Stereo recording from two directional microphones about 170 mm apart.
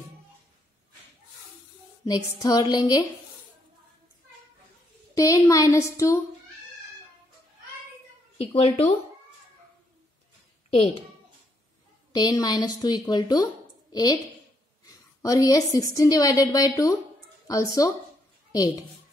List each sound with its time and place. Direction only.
2.0 s a woman's voice: 20° left (ahead or behind)
5.1 s a woman's voice: 20° left (ahead or behind)
8.4 s speech: 35° left (ahead or behind)
12.1 s a woman's voice: 25° left (ahead or behind)
15.2 s a woman's voice: 20° left (ahead or behind)